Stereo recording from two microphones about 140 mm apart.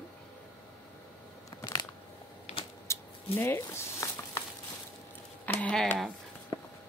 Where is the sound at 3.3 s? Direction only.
15° left (ahead or behind).